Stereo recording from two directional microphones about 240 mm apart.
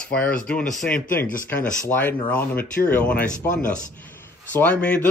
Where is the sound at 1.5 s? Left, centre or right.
Centre.